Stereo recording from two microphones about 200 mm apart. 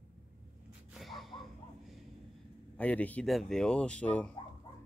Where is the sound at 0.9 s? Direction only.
Centre (ahead or behind).